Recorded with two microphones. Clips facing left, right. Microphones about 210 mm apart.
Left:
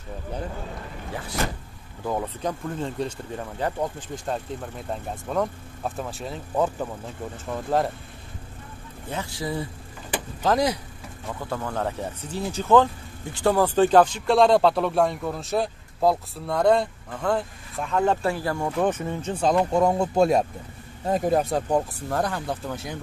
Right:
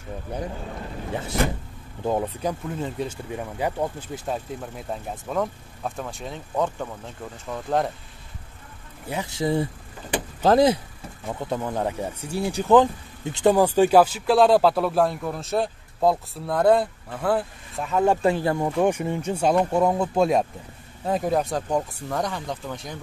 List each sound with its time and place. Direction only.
1.1 s speech: 25° right (ahead or behind)
2.4 s speech: 5° right (ahead or behind)
9.1 s speech: 20° right (ahead or behind); by 22.9 s 5° left (ahead or behind)